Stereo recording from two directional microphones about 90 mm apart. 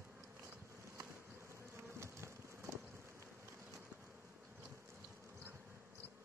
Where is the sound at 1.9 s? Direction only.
30° right (ahead or behind).